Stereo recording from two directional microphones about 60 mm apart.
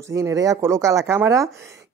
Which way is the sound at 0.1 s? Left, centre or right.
Right.